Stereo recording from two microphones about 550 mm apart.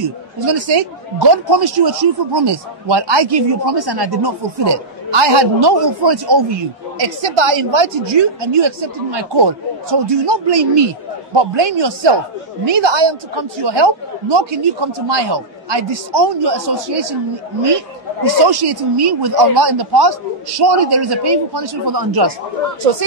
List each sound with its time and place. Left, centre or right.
0.7 s speech: right
7.0 s speech: right